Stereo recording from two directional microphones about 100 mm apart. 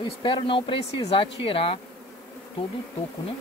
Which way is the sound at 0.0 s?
55° left (ahead or behind).